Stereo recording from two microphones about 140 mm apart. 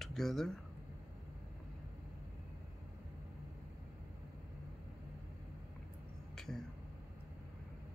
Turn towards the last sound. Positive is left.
turn(degrees=5)  # may be behind; listen again after turning